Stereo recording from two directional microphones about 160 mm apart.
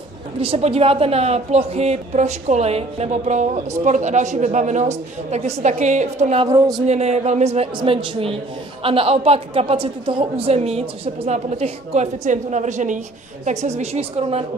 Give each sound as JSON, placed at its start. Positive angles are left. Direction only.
{"t": 0.4, "sound": "a woman's voice", "side_deg": -35}